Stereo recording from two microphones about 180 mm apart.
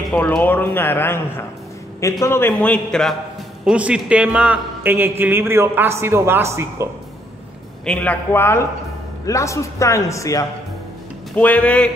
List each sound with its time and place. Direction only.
0.1 s a man's voice: 10° left (ahead or behind); by 6.9 s 15° right (ahead or behind)
7.8 s speech: 5° left (ahead or behind)